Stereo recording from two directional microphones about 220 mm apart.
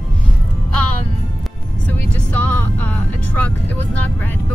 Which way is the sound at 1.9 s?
10° left (ahead or behind).